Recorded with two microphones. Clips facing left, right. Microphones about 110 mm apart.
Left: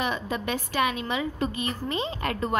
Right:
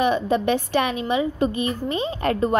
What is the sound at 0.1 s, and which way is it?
A woman's voice, 25° right (ahead or behind).